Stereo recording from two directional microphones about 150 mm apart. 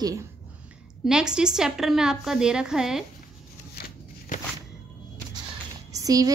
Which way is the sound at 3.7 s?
80° left.